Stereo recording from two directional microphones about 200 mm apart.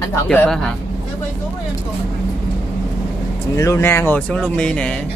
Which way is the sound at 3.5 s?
15° left (ahead or behind).